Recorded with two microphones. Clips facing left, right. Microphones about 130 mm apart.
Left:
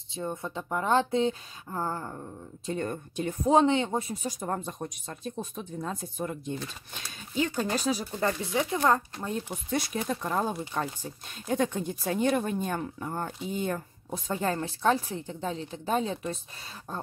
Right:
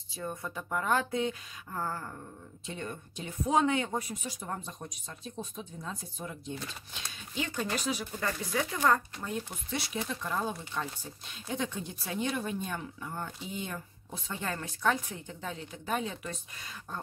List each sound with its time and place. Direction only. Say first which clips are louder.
0.1 s speech: left 4 dB; 25° left (ahead or behind)
2.6 s speech: left 8 dB; 45° left (ahead or behind)
3.4 s speech: left 5 dB; 30° left (ahead or behind)
4.2 s speech: left 6 dB; 45° left (ahead or behind)
7.3 s speech: left 6 dB; 40° left (ahead or behind)
9.7 s speech: left 6 dB; 45° left (ahead or behind)